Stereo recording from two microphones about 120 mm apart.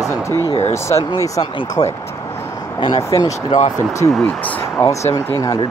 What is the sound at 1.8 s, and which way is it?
Speech, 40° left (ahead or behind).